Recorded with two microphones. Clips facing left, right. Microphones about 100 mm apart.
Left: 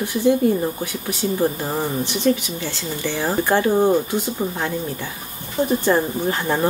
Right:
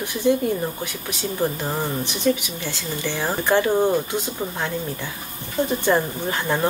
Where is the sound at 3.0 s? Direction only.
15° left (ahead or behind).